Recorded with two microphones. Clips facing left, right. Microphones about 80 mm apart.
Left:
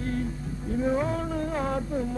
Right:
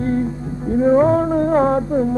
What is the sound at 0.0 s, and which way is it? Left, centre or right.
Music, right.